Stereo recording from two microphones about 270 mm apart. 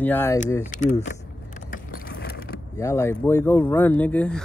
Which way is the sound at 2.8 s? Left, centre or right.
Centre.